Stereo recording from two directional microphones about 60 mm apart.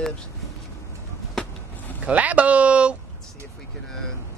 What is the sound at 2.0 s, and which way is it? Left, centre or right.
Speech, right.